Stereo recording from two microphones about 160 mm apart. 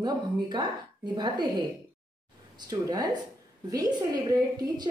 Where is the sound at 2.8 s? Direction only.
25° right (ahead or behind).